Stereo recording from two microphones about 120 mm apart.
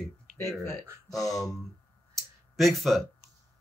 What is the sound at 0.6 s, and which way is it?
Speech, 25° left (ahead or behind).